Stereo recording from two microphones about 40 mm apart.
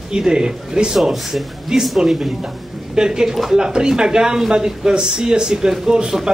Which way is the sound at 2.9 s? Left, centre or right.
Centre.